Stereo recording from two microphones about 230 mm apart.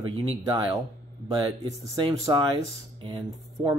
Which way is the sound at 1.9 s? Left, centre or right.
Centre.